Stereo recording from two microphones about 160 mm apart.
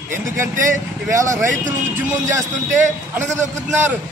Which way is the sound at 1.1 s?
20° right (ahead or behind).